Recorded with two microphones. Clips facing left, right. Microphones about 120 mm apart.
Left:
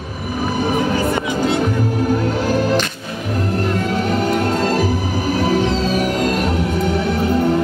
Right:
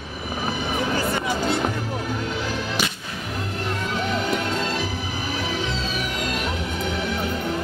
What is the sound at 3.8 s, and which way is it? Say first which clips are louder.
Music: left 7 dB; 45° left (ahead or behind).